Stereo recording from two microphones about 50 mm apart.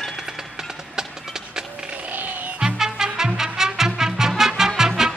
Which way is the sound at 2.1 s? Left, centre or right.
Right.